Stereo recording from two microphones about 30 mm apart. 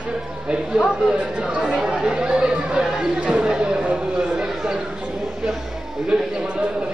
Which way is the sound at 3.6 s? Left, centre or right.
Right.